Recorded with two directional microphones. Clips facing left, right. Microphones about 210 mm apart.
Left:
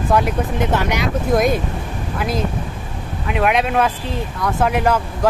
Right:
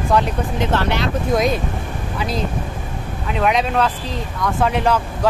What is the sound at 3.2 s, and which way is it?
Speech, 5° left (ahead or behind).